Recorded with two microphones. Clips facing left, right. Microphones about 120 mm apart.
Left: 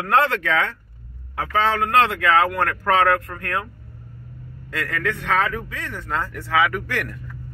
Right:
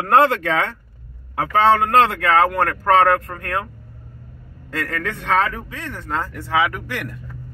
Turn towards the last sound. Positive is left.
turn(degrees=-20)  # may be behind; listen again after turning